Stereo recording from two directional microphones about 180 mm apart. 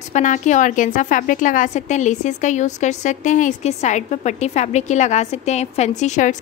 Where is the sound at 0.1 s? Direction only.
45° left (ahead or behind).